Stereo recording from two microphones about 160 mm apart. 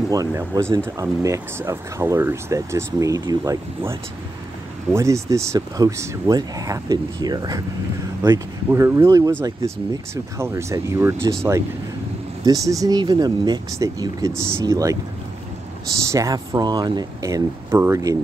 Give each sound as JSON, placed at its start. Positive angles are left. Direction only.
{"t": 0.1, "sound": "speech", "side_deg": -20}
{"t": 4.9, "sound": "speech", "side_deg": -20}
{"t": 12.4, "sound": "speech", "side_deg": -20}
{"t": 16.1, "sound": "speech", "side_deg": -20}